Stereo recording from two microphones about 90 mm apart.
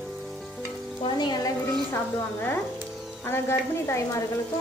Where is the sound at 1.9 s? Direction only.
25° left (ahead or behind).